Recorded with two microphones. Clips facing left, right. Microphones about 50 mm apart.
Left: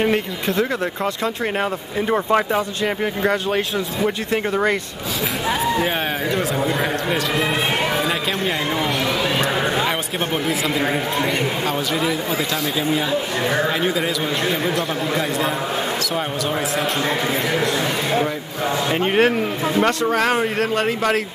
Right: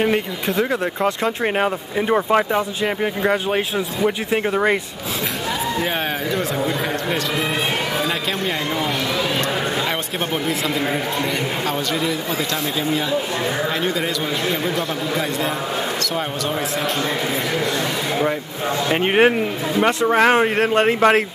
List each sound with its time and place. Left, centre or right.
0.5 s speech: centre
2.0 s speech: centre
18.9 s speech: right